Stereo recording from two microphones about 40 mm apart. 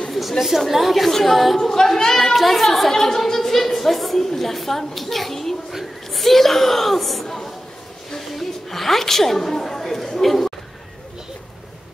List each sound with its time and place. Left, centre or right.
0.4 s a woman's voice: centre
1.6 s a woman's voice: centre
7.2 s a sound: centre
8.3 s a woman's voice: centre